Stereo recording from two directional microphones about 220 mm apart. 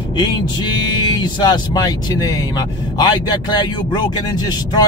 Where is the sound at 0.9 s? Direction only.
20° left (ahead or behind).